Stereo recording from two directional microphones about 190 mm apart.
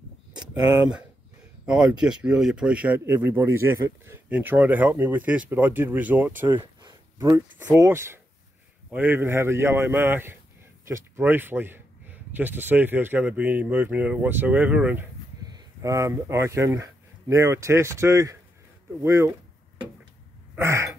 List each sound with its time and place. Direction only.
1.7 s speech: 5° right (ahead or behind)
6.5 s speech: 20° right (ahead or behind)
15.4 s speech: 20° right (ahead or behind)
20.5 s speech: 15° right (ahead or behind)